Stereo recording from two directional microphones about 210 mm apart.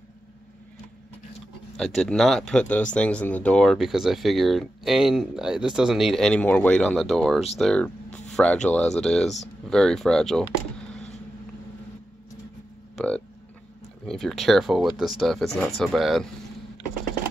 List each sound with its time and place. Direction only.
1.8 s speech: centre (ahead or behind)
10.9 s vehicle: 5° left (ahead or behind)
12.9 s a sound: 5° left (ahead or behind)
14.0 s speech: centre (ahead or behind)